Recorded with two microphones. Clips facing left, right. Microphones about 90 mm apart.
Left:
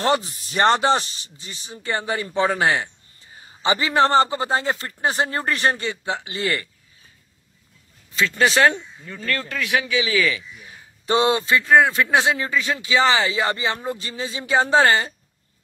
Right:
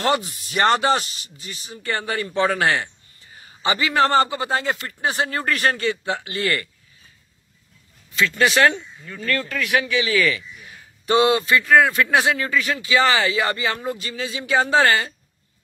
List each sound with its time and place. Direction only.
0.0 s speech: 30° left (ahead or behind)
8.1 s speech: 35° left (ahead or behind)